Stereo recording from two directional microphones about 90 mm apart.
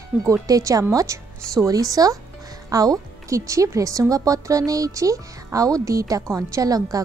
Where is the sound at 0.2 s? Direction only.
40° right (ahead or behind).